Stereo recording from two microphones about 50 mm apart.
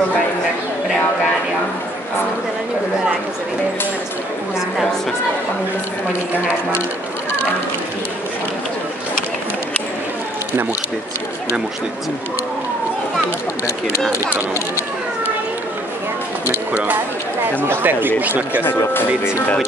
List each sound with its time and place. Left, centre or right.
16.4 s speech: right
18.6 s speech: left